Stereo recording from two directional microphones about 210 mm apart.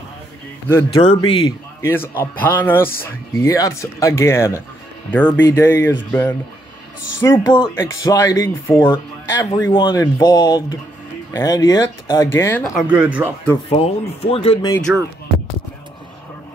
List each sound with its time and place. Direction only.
1.0 s speech: 25° left (ahead or behind)
1.8 s speech: 10° left (ahead or behind)
7.2 s speech: 15° left (ahead or behind)
12.7 s speech: 5° right (ahead or behind)
13.7 s speech: 30° left (ahead or behind)
14.9 s speech: 5° right (ahead or behind)